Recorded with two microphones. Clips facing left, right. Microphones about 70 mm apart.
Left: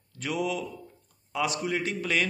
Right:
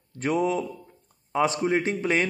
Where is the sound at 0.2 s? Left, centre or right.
Right.